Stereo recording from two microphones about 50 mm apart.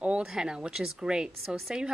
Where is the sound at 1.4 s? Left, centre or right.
Centre.